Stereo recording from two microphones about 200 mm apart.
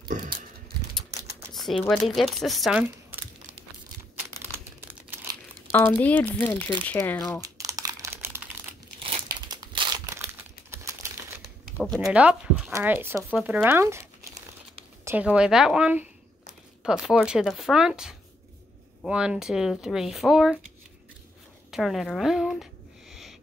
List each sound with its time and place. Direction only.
0.1 s a sound: 40° right (ahead or behind)
1.5 s a sound: centre (ahead or behind)
1.9 s speech: centre (ahead or behind)
5.7 s speech: 10° left (ahead or behind)
7.4 s crumpling: 15° right (ahead or behind)
9.0 s crumpling: 25° right (ahead or behind)
11.4 s speech: centre (ahead or behind)
15.0 s speech: 5° right (ahead or behind)
21.6 s speech: centre (ahead or behind)